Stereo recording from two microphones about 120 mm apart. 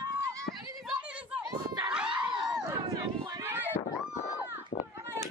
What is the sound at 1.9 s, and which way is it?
Dog, 10° right (ahead or behind).